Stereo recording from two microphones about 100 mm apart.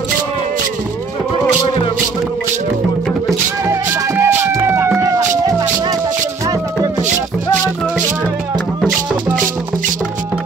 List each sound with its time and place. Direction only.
4.2 s music: 25° right (ahead or behind)